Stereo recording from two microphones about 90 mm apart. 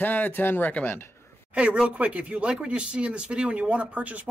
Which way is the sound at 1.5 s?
15° right (ahead or behind).